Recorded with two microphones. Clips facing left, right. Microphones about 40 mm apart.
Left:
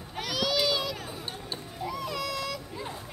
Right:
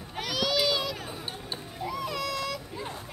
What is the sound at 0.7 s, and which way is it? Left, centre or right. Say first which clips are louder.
Children playing: right 1 dB; right.